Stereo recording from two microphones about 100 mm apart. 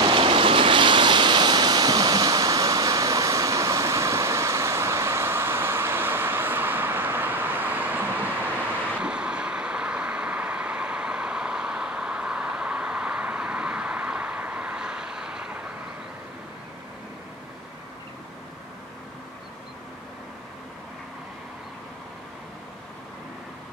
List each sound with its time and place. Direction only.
0.0 s waves: 60° right (ahead or behind); by 8.3 s 20° right (ahead or behind)
9.0 s vehicle: 10° right (ahead or behind)